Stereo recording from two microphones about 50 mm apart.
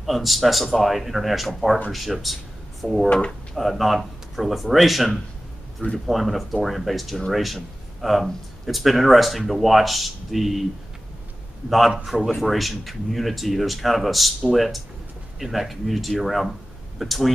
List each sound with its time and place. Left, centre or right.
0.0 s speech: centre
3.1 s speech: left
3.5 s speech: centre
12.0 s speech: centre